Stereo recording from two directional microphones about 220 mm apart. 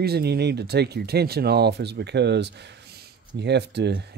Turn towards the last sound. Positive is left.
turn(degrees=-50)  # may be behind; listen again after turning